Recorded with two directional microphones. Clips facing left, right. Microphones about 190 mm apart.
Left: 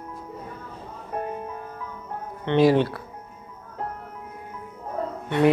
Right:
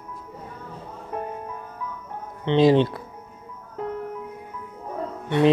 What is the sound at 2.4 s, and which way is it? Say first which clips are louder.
Speech: right 1 dB; 20° right (ahead or behind).